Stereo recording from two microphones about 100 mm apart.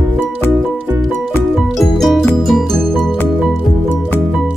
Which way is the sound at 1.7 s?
Centre (ahead or behind).